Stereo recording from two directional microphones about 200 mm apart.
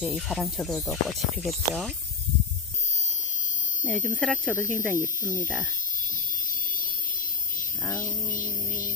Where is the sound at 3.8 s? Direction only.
5° left (ahead or behind).